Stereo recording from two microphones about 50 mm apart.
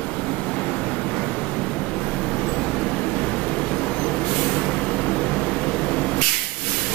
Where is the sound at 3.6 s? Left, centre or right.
Centre.